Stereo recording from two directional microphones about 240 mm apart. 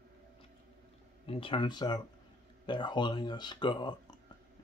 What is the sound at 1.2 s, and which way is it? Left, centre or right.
Speech, left.